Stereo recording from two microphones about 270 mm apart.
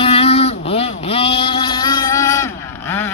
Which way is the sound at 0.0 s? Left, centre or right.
Left.